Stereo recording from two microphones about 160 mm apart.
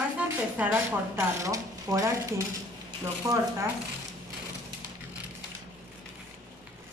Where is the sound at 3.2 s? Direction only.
20° right (ahead or behind).